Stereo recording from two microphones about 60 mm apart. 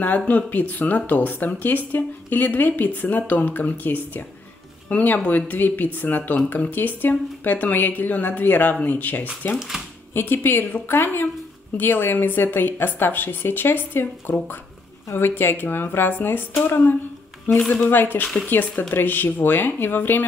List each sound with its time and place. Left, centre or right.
0.3 s speech: left
9.6 s speech: centre
10.1 s a woman's voice: left
17.5 s speech: centre
17.8 s a woman's voice: left